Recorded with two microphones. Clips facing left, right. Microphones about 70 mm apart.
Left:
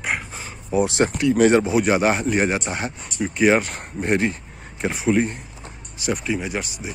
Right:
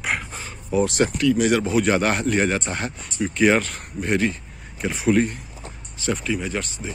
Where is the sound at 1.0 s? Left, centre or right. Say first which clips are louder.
Left 6 dB; left.